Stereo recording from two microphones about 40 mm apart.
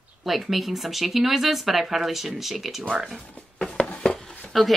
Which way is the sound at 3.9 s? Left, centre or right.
Left.